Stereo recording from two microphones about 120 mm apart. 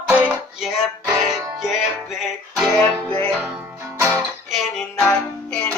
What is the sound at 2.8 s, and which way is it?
Music, 15° left (ahead or behind).